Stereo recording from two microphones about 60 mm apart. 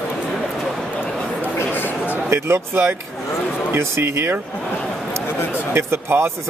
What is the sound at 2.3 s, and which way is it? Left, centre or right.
Speech, right.